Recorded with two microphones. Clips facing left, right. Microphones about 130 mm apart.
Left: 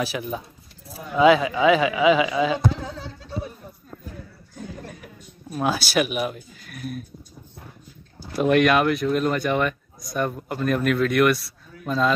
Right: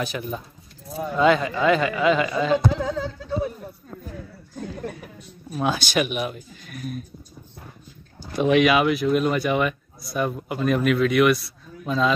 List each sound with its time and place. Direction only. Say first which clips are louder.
0.0 s speech: left 1 dB; 5° left (ahead or behind)
2.7 s a sound: right 6 dB; 90° right
5.5 s speech: even; 5° left (ahead or behind)
8.3 s speech: even; centre (ahead or behind)